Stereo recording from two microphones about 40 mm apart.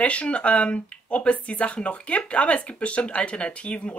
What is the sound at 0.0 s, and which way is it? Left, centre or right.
Speech, left.